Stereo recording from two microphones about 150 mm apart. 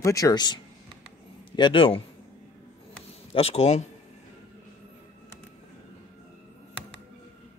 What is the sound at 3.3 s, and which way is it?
Speech, 45° left (ahead or behind).